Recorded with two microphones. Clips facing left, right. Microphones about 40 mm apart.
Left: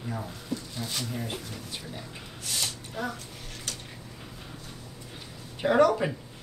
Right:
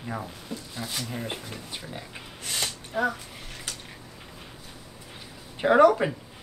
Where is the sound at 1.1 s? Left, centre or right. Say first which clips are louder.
Right 1 dB; right.